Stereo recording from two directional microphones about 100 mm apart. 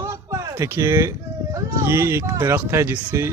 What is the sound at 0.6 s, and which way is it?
Speech, 30° right (ahead or behind).